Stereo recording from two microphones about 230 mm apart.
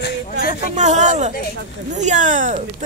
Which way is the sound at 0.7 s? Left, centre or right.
Right.